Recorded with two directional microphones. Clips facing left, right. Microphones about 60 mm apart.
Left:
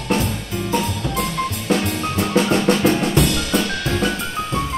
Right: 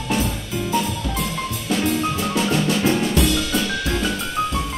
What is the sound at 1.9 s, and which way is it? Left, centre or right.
Music, left.